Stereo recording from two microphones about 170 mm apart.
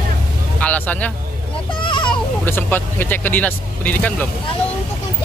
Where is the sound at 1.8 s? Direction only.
25° left (ahead or behind).